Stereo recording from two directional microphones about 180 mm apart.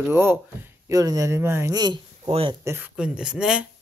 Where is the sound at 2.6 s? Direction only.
15° right (ahead or behind).